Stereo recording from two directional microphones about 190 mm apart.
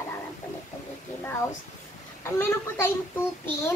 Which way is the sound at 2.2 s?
15° left (ahead or behind).